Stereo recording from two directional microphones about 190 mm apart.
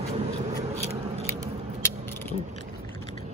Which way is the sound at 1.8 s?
10° left (ahead or behind).